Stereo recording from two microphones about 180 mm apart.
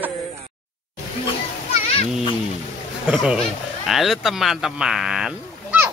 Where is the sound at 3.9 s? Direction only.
Centre (ahead or behind).